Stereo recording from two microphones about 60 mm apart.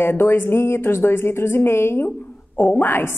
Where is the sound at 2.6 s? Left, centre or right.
Left.